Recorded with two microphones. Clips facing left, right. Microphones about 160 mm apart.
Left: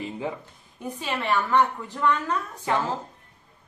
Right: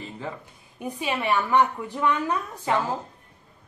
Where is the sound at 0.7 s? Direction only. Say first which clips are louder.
Right 2 dB; 15° right (ahead or behind).